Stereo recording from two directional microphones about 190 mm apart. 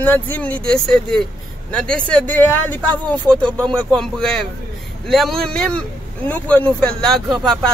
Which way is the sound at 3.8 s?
5° left (ahead or behind).